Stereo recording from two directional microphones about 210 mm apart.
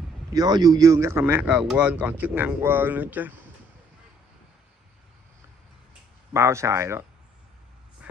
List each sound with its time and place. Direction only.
0.3 s a man's voice: 20° right (ahead or behind)
6.3 s a man's voice: 15° right (ahead or behind)
8.0 s a sound: 5° right (ahead or behind)